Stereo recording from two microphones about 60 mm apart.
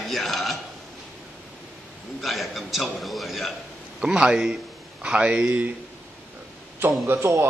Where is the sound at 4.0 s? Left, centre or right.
Centre.